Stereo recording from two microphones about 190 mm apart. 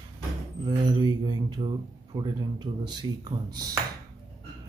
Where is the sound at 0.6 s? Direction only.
25° right (ahead or behind).